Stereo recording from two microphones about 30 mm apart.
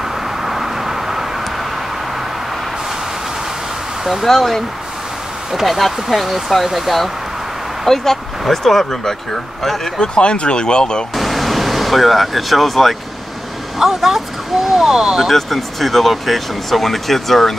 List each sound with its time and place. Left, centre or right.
0.0 s vehicle: centre
4.0 s speech: centre
4.3 s speech: centre
5.5 s speech: centre
7.8 s speech: centre
9.9 s speech: left
11.1 s a sound: centre
13.7 s a sound: centre
15.2 s speech: centre